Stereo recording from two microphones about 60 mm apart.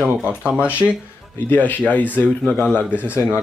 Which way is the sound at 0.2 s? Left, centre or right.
Right.